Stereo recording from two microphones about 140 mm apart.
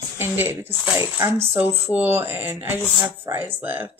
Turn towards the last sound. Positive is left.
turn(degrees=-15)  # may be behind; listen again after turning